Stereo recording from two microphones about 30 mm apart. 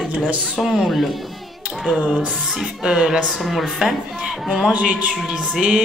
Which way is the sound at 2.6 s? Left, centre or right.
Centre.